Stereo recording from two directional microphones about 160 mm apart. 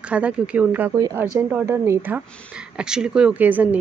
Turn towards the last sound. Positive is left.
turn(degrees=-10)  # may be behind; listen again after turning